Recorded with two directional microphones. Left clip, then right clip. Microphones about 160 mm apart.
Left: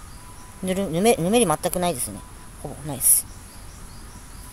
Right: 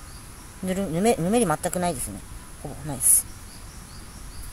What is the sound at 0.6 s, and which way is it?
Speech, 15° left (ahead or behind).